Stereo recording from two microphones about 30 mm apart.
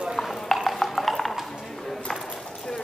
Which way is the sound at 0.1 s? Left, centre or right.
Centre.